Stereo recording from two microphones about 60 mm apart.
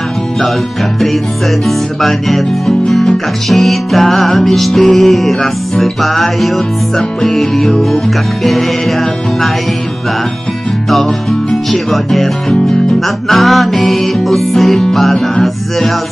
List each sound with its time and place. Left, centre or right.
1.7 s music: centre
11.7 s music: centre